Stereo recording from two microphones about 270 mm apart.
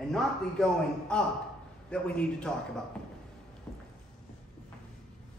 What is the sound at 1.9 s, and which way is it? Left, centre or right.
Speech, centre.